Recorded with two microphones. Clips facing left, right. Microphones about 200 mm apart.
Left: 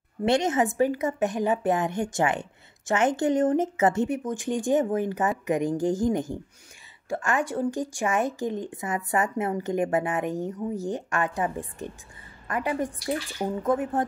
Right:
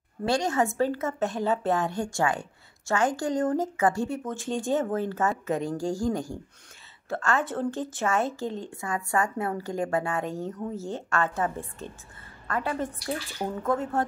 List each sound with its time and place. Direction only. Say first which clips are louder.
0.2 s a woman's voice: left 3 dB; 20° left (ahead or behind)